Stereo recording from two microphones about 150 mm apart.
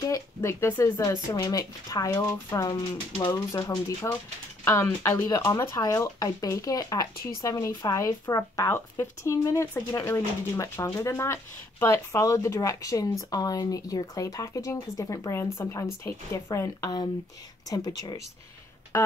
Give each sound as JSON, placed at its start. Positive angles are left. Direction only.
{"t": 0.1, "sound": "speech", "side_deg": 20}
{"t": 18.9, "sound": "music", "side_deg": 20}